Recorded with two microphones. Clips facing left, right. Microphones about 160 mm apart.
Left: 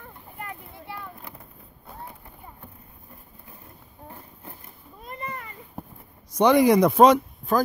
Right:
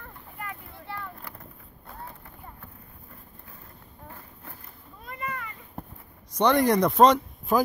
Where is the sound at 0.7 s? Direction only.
15° left (ahead or behind).